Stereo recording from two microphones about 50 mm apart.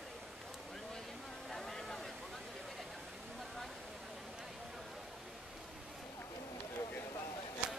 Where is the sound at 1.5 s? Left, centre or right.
Centre.